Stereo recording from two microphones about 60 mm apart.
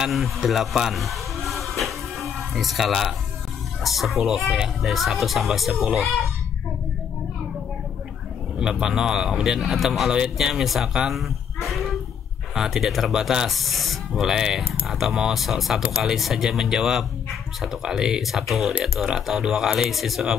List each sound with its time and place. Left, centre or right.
0.0 s a sound: centre
3.8 s speech: centre
8.5 s a man's voice: centre